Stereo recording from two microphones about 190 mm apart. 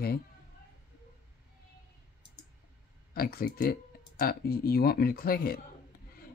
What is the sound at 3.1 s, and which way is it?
Speech, 55° left (ahead or behind).